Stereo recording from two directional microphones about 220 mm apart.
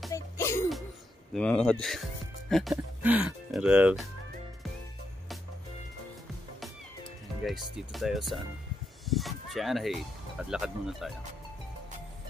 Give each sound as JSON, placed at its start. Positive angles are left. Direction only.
{"t": 0.1, "sound": "music", "side_deg": 10}
{"t": 1.3, "sound": "speech", "side_deg": 5}
{"t": 7.4, "sound": "speech", "side_deg": 0}
{"t": 9.0, "sound": "a sound", "side_deg": 0}
{"t": 10.4, "sound": "speech", "side_deg": -5}